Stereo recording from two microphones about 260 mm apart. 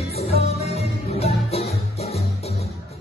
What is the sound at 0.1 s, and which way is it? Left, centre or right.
Music, left.